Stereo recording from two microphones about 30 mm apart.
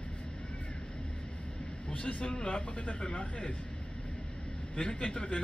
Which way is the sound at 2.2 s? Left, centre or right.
Left.